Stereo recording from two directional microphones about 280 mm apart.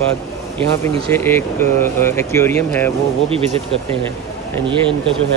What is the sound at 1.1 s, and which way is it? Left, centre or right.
Speech, centre.